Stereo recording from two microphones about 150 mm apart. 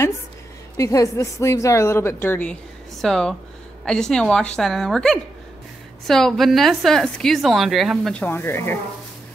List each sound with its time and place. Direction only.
0.7 s a woman's voice: 20° left (ahead or behind)